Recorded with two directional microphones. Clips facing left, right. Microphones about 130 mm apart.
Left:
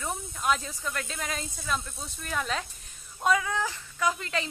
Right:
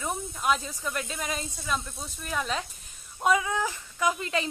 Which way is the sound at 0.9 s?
15° right (ahead or behind).